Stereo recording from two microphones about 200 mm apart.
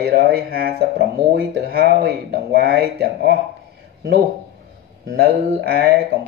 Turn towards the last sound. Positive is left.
turn(degrees=-50)  # may be behind; listen again after turning